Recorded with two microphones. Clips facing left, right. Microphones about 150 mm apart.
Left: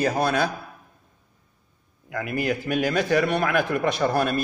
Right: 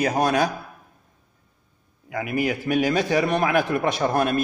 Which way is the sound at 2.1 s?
15° right (ahead or behind).